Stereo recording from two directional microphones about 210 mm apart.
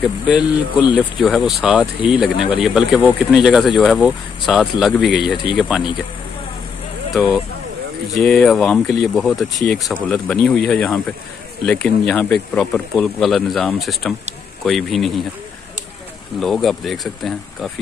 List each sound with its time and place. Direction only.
0.0 s speech: 5° right (ahead or behind)
8.1 s speech: 5° left (ahead or behind)
16.3 s speech: centre (ahead or behind)